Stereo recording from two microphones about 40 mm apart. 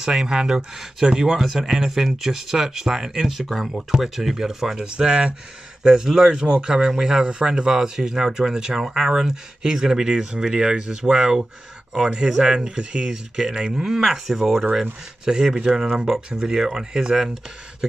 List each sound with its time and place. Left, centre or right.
0.0 s speech: centre
4.7 s speech: right